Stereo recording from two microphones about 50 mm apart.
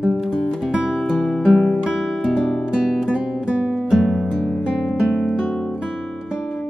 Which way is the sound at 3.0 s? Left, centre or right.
Right.